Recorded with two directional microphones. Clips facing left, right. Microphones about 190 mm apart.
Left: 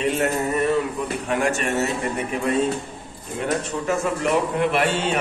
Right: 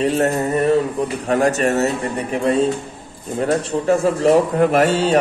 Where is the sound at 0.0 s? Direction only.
35° right (ahead or behind).